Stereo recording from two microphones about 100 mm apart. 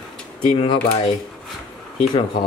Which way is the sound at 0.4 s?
65° left (ahead or behind).